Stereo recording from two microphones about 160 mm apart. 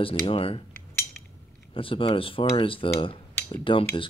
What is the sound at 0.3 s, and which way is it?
Speech, 35° left (ahead or behind).